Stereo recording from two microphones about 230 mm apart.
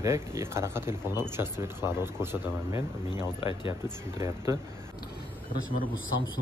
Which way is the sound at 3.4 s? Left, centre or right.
Left.